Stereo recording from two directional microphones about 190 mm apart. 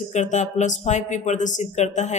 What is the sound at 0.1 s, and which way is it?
Speech, 40° left (ahead or behind).